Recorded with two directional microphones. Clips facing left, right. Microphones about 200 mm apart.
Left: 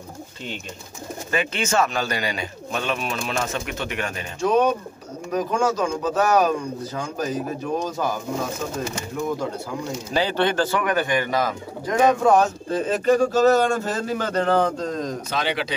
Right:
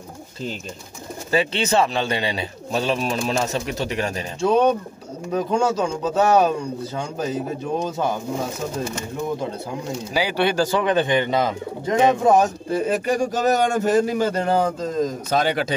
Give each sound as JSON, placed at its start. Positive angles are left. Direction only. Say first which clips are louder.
{"t": 1.3, "sound": "a man's voice", "louder": "right 3 dB", "side_deg": -30}
{"t": 10.1, "sound": "speech", "louder": "right 1 dB", "side_deg": -10}
{"t": 10.8, "sound": "speech", "louder": "right 3 dB", "side_deg": -25}
{"t": 15.3, "sound": "a man's voice", "louder": "right 6 dB", "side_deg": -45}